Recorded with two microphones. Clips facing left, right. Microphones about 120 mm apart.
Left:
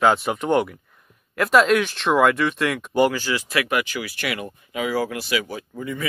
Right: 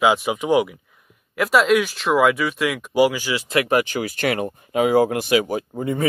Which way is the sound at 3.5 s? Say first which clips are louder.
Right 6 dB; 35° right (ahead or behind).